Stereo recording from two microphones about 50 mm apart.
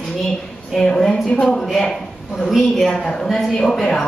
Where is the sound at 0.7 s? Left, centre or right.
Centre.